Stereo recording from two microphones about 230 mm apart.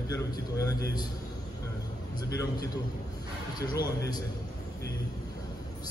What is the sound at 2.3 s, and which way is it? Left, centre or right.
A man's voice, centre.